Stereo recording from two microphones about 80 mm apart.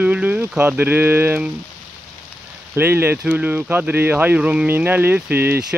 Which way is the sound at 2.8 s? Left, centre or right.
Right.